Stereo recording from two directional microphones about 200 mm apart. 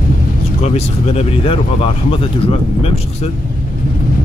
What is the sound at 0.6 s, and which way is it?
Speech, 30° left (ahead or behind).